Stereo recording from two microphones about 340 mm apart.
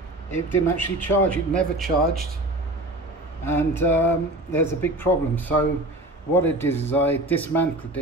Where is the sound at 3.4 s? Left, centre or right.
Centre.